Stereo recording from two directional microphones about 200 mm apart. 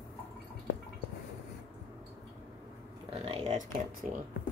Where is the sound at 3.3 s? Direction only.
40° right (ahead or behind).